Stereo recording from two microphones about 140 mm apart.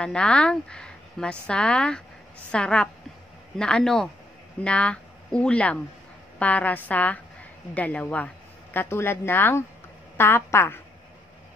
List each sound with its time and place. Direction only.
0.0 s a woman's voice: 5° left (ahead or behind)